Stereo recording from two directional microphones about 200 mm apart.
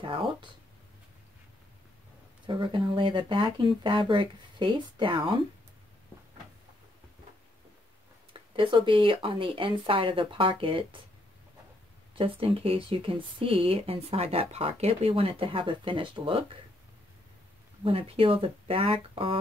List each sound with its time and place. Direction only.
0.0 s speech: 25° right (ahead or behind)
2.4 s speech: 25° right (ahead or behind)
8.3 s speech: 25° right (ahead or behind)
12.2 s speech: 25° right (ahead or behind)
17.8 s speech: 30° right (ahead or behind)